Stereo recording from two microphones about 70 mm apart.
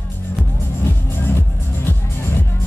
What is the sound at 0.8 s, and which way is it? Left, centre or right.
Music, left.